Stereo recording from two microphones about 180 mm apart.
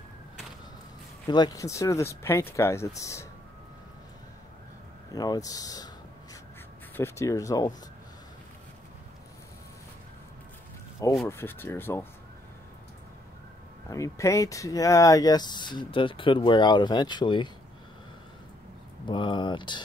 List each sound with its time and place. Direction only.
1.2 s speech: 25° left (ahead or behind)
5.1 s speech: 20° left (ahead or behind)
7.0 s speech: 15° left (ahead or behind)
11.2 s speech: 15° left (ahead or behind)
13.8 s speech: 15° left (ahead or behind)
19.0 s speech: 25° left (ahead or behind)